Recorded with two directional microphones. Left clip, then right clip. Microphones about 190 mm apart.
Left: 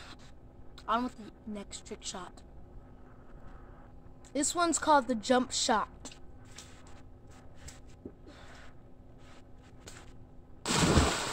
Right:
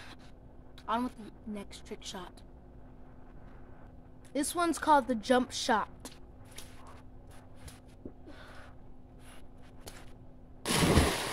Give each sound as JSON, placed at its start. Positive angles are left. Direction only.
{"t": 0.8, "sound": "speech", "side_deg": 0}
{"t": 4.3, "sound": "speech", "side_deg": 0}
{"t": 10.6, "sound": "a sound", "side_deg": -20}